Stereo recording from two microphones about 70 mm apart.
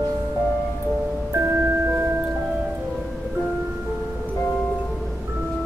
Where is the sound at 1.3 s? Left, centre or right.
Right.